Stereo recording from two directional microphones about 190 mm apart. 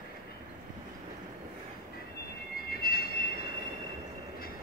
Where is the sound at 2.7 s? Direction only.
50° left (ahead or behind).